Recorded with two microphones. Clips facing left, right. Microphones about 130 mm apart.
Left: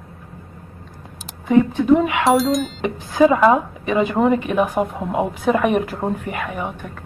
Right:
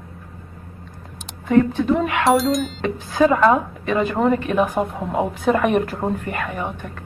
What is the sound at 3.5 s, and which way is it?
A woman's voice, 15° left (ahead or behind).